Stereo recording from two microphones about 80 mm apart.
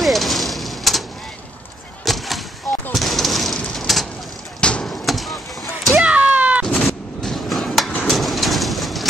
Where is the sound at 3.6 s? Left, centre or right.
Centre.